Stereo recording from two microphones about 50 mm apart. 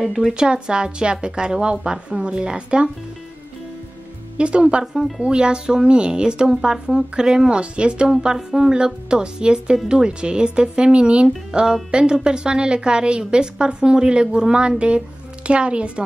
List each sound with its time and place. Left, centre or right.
0.0 s speech: centre
0.3 s speech: centre
4.4 s speech: right
8.1 s speech: centre